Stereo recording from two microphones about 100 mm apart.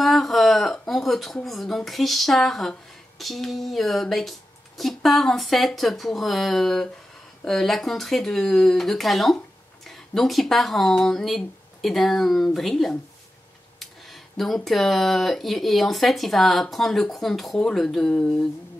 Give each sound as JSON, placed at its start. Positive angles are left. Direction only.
{"t": 0.0, "sound": "speech", "side_deg": 0}